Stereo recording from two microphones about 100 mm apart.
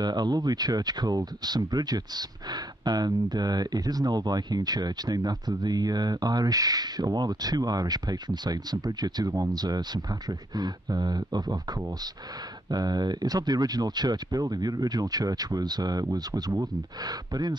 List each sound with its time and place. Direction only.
0.0 s speech: 45° right (ahead or behind)
12.7 s speech: 45° right (ahead or behind)